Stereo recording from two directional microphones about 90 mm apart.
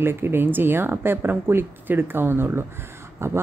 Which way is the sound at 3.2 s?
30° right (ahead or behind).